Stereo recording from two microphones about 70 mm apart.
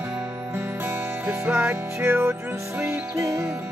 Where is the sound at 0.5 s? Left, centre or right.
Right.